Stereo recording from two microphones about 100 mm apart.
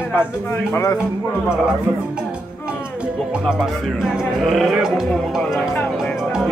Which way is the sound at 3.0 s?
10° right (ahead or behind).